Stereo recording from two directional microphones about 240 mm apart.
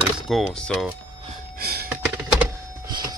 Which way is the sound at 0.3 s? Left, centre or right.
Centre.